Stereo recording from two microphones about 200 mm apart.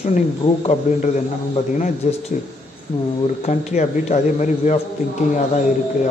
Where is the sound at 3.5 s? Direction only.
35° left (ahead or behind).